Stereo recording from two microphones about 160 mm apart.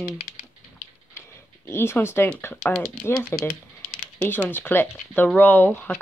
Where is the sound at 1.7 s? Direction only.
15° left (ahead or behind).